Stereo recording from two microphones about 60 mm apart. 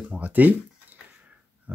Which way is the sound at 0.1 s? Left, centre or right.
Right.